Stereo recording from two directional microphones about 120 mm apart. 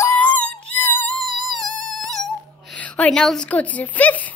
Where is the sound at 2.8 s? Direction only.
10° left (ahead or behind).